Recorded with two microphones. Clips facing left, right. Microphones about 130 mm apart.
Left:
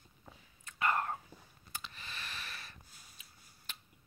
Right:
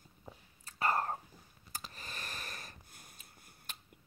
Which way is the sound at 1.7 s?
40° right (ahead or behind).